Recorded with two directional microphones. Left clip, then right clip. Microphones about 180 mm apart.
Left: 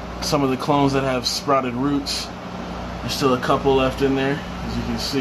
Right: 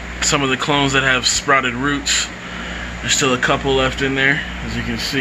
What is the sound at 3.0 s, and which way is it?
Speech, 15° right (ahead or behind).